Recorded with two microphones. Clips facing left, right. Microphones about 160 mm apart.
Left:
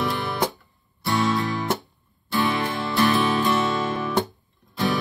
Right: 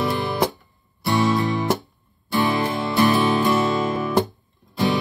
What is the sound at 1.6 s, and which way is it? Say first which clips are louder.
Music: right 4 dB; centre (ahead or behind).